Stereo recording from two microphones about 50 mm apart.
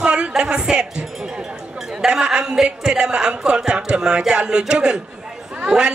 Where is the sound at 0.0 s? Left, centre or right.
Centre.